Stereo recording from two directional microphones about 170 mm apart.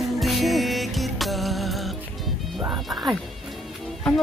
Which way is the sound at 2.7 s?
Centre (ahead or behind).